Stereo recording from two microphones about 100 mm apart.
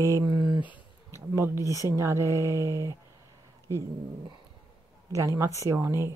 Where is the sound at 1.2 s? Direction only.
25° right (ahead or behind).